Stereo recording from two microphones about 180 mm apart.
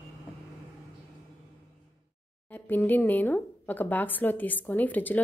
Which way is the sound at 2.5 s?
10° left (ahead or behind).